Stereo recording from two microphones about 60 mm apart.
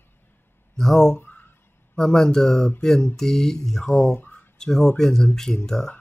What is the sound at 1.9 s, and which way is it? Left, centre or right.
Speech, centre.